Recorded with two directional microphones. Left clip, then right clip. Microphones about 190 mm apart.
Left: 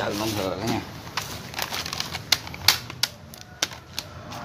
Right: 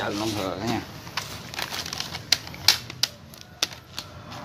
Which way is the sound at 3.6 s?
15° right (ahead or behind).